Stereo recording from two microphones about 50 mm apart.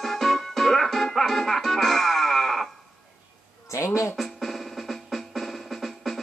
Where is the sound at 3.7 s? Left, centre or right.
Left.